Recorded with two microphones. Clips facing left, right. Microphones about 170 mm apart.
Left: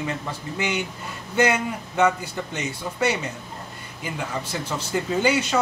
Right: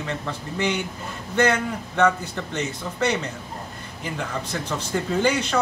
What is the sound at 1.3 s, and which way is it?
Speech, 10° left (ahead or behind).